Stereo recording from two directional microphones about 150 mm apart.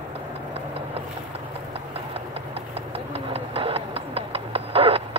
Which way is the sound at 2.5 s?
40° right (ahead or behind).